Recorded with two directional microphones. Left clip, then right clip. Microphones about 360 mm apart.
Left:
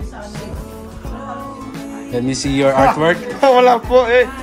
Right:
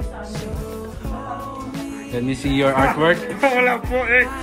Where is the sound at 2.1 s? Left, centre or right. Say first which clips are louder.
Left 3 dB; centre.